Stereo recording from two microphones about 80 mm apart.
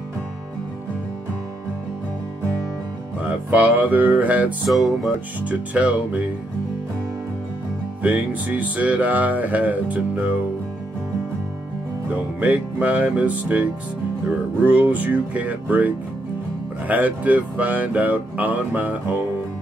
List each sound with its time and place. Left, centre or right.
3.2 s speech: centre
4.6 s music: centre
5.4 s speech: centre
8.0 s speech: centre
12.4 s speech: centre